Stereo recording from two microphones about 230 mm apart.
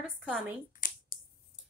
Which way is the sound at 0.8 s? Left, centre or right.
Left.